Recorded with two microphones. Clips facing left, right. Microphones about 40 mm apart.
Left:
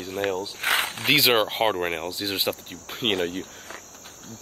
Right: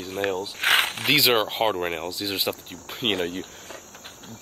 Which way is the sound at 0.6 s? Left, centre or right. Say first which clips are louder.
Right 5 dB; right.